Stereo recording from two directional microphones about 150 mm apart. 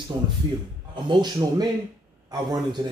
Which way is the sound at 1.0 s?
30° right (ahead or behind).